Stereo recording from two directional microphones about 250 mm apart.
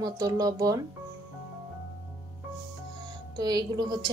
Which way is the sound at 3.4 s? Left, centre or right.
Centre.